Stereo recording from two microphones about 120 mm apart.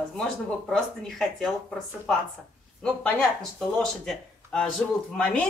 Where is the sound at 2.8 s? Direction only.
10° left (ahead or behind).